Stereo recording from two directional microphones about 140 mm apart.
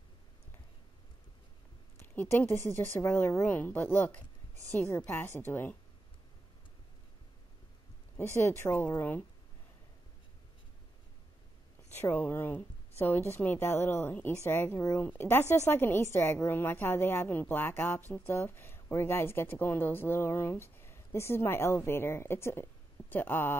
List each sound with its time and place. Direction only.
2.0 s speech: 15° left (ahead or behind)
8.4 s speech: 20° left (ahead or behind)
11.9 s a woman's voice: 15° left (ahead or behind)